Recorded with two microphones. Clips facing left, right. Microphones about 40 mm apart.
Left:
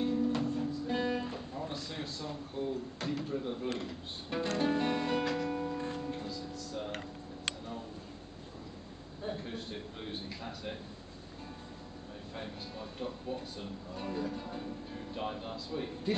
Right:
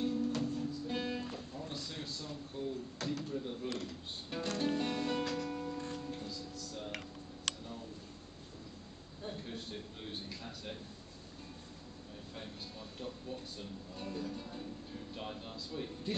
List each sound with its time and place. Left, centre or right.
0.0 s music: left
1.2 s music: left
1.7 s a sound: centre
2.2 s speech: centre
4.6 s music: centre
6.3 s music: centre
9.2 s speech: centre
12.4 s speech: centre